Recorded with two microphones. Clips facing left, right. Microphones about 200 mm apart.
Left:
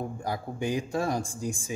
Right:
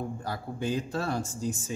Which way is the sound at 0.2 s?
15° left (ahead or behind).